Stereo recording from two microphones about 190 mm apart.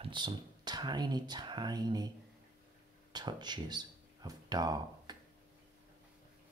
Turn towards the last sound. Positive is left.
turn(degrees=-20)  # may be behind; listen again after turning